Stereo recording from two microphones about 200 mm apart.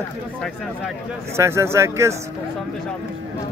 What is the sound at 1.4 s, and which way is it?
Speech, 15° right (ahead or behind).